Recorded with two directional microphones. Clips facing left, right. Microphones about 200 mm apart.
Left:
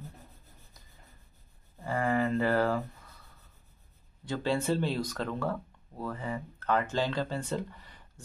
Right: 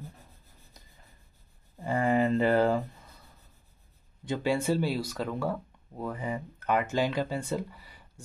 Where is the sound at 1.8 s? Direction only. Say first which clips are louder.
Right 3 dB; 20° right (ahead or behind).